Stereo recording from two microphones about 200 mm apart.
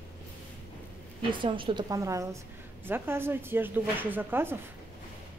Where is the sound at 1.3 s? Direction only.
25° right (ahead or behind).